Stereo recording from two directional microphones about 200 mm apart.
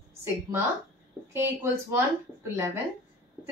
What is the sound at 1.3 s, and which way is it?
Speech, 10° right (ahead or behind).